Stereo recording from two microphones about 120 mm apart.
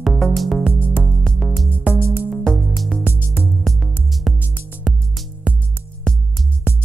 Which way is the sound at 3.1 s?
20° left (ahead or behind).